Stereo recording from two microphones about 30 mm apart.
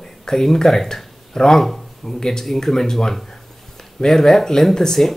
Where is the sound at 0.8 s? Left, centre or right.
Left.